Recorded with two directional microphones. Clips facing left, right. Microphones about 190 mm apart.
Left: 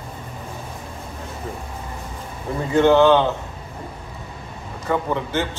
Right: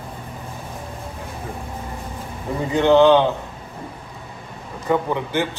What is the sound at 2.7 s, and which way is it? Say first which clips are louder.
Speech: right 1 dB; 15° right (ahead or behind).